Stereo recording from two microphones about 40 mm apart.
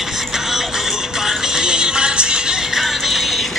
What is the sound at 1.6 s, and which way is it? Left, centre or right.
Music, right.